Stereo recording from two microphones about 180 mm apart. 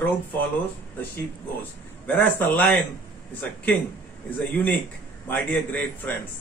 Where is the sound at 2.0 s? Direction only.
10° left (ahead or behind).